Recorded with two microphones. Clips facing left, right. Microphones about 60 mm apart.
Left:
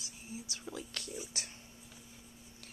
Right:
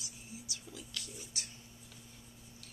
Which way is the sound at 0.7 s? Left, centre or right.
Left.